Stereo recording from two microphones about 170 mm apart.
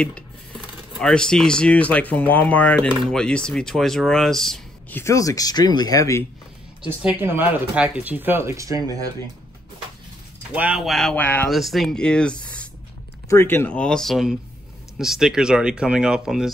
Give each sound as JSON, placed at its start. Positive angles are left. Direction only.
{"t": 0.9, "sound": "speech", "side_deg": 5}
{"t": 7.0, "sound": "speech", "side_deg": -10}
{"t": 10.5, "sound": "speech", "side_deg": -5}